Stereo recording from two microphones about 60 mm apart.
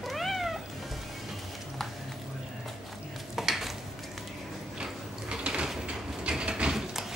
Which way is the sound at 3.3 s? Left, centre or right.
Centre.